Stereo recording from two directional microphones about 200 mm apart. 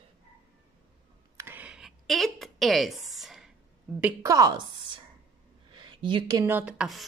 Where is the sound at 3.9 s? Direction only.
10° right (ahead or behind).